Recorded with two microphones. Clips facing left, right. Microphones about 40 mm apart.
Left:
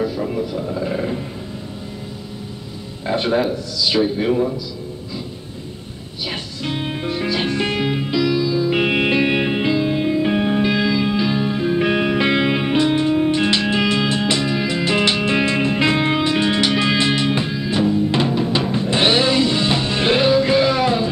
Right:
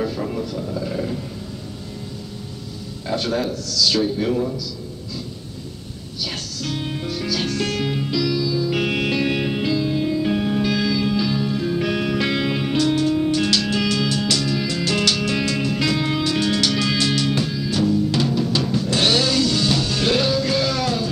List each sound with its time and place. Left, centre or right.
0.0 s a sound: centre; by 1.2 s left
3.1 s speech: left
6.2 s music: left